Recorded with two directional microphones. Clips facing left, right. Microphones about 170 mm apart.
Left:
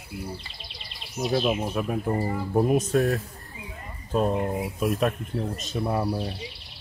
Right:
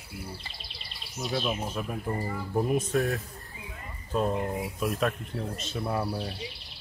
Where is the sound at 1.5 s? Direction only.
55° left (ahead or behind).